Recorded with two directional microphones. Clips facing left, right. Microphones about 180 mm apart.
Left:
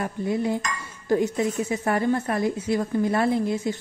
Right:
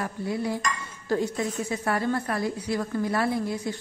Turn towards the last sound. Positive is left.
turn(degrees=20)  # may be behind; listen again after turning